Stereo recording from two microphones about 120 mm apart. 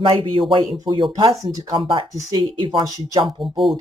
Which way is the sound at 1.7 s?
45° right (ahead or behind).